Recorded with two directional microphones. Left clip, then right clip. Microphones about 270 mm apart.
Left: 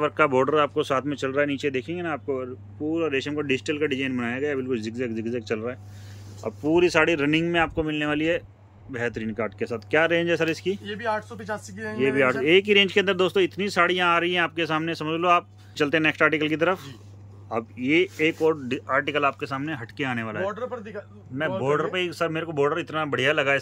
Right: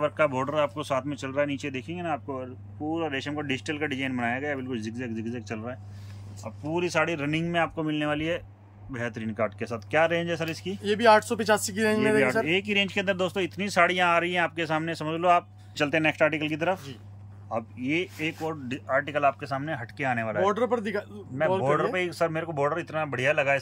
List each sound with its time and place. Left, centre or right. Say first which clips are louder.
0.0 s speech: left 4 dB; centre
10.9 s speech: right 8 dB; right
12.2 s speech: left 5 dB; centre
20.4 s speech: right 5 dB; right
21.6 s speech: left 1 dB; centre